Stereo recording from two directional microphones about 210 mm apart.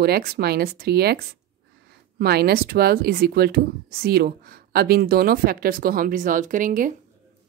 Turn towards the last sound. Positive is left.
turn(degrees=-40)  # may be behind; listen again after turning